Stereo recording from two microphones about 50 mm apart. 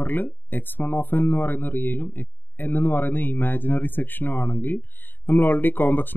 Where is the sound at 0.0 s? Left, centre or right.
Left.